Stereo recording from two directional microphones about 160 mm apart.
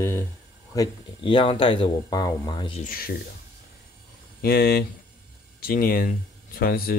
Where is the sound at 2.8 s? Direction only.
65° left (ahead or behind).